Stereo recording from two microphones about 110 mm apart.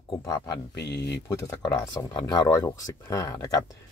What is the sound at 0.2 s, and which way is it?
Speech, 40° left (ahead or behind).